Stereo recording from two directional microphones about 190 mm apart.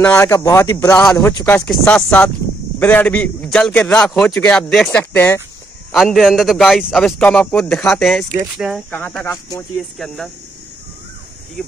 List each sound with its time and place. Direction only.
0.0 s a man's voice: 15° left (ahead or behind); by 8.8 s centre (ahead or behind)
8.9 s a man's voice: 10° left (ahead or behind)